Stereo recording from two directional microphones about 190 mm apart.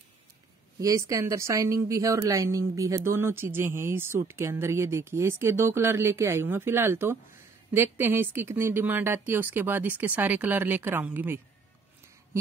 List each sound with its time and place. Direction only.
0.7 s speech: 15° right (ahead or behind)